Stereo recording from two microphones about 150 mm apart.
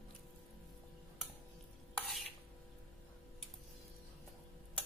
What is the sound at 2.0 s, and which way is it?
Stir, centre (ahead or behind).